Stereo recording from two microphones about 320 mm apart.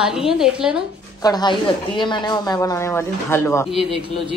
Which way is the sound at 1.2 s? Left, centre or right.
Centre.